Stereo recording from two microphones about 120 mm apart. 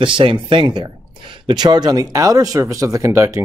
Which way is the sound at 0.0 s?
45° right (ahead or behind).